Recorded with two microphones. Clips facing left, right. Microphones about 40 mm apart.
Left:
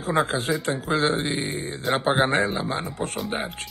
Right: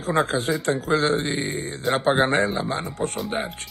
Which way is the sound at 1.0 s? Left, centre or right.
Left.